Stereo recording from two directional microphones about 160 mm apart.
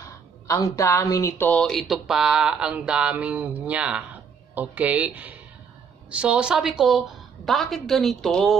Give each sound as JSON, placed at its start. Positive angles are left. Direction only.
{"t": 0.0, "sound": "speech", "side_deg": 20}